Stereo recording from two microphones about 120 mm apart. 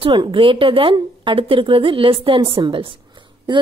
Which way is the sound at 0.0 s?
45° right (ahead or behind).